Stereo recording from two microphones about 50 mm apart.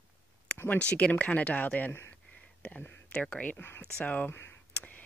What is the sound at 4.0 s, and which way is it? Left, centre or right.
Speech, left.